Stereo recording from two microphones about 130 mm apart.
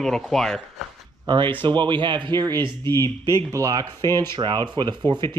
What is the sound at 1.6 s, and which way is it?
Speech, 40° right (ahead or behind).